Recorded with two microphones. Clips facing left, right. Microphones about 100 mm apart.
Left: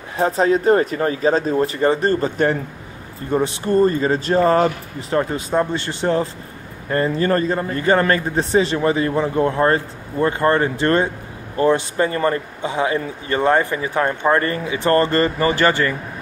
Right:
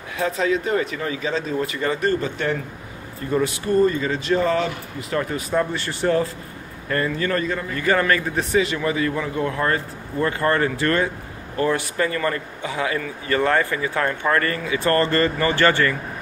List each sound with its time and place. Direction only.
0.1 s a man's voice: 35° left (ahead or behind)
5.1 s a man's voice: 30° left (ahead or behind)